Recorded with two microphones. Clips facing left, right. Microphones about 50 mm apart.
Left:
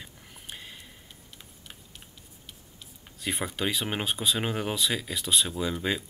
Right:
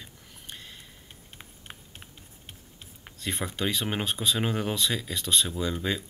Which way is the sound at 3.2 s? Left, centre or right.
Centre.